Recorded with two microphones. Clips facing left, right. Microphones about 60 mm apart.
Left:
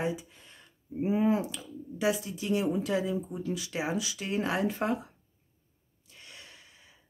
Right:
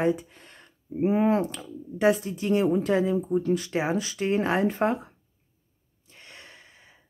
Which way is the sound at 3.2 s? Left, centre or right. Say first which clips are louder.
Right 10 dB; right.